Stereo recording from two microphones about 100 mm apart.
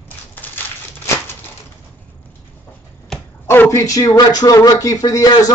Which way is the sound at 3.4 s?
25° left (ahead or behind).